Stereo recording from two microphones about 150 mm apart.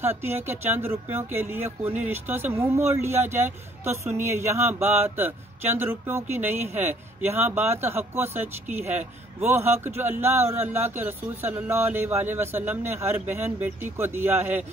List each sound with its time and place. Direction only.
0.0 s speech: 15° right (ahead or behind)
6.5 s speech: 50° right (ahead or behind)
6.8 s speech: 15° right (ahead or behind)
9.4 s speech: 15° right (ahead or behind)